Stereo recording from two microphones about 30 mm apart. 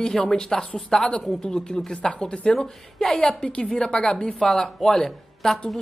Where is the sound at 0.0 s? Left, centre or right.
Centre.